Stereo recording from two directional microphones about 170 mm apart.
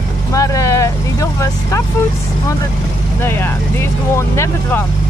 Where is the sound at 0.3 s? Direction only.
20° left (ahead or behind).